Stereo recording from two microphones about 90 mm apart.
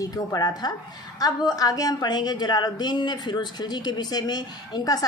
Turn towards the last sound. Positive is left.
turn(degrees=45)  # may be behind; listen again after turning